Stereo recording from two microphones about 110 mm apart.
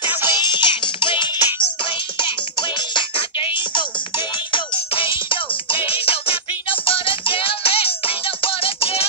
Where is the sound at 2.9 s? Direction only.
50° left (ahead or behind).